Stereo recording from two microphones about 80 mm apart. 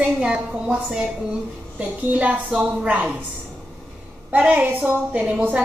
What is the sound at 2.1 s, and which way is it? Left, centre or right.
A woman's voice, centre.